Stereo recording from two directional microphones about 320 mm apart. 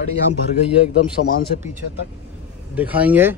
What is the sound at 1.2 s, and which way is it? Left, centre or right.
Speech, left.